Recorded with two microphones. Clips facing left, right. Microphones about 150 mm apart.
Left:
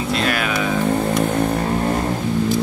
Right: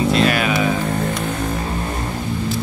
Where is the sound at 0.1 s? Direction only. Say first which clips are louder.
Right 4 dB; centre (ahead or behind).